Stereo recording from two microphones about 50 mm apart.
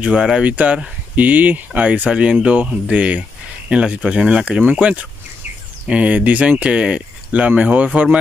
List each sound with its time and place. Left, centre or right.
0.0 s speech: centre
0.4 s speech: right